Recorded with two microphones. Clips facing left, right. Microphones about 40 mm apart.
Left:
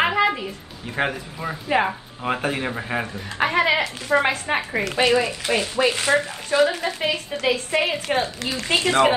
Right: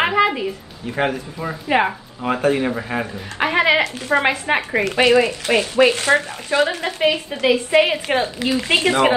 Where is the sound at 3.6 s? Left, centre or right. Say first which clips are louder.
Right 4 dB; right.